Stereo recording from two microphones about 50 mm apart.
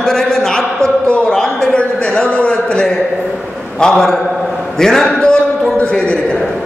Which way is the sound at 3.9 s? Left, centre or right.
Centre.